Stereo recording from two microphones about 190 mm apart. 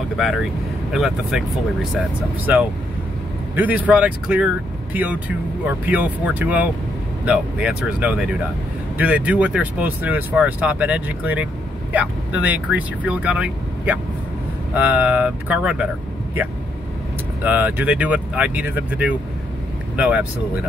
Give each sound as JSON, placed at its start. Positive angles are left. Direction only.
{"t": 0.9, "sound": "speech", "side_deg": 0}
{"t": 17.4, "sound": "speech", "side_deg": -10}